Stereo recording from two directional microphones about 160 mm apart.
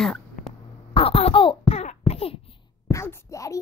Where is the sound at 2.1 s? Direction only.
35° left (ahead or behind).